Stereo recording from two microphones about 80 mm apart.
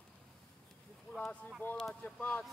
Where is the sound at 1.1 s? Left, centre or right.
Centre.